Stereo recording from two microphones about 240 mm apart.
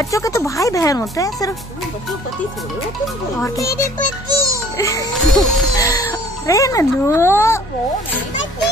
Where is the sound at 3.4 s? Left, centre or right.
Centre.